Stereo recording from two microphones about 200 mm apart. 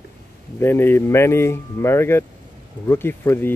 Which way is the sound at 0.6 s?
10° left (ahead or behind).